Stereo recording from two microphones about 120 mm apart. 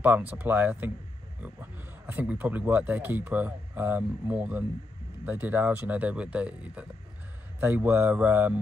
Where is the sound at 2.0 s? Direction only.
15° right (ahead or behind).